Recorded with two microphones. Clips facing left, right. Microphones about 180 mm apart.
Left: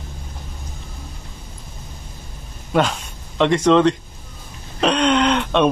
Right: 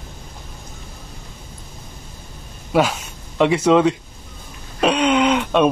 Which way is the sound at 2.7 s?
5° right (ahead or behind).